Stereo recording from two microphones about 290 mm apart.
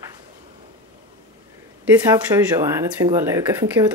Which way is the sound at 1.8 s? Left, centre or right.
Centre.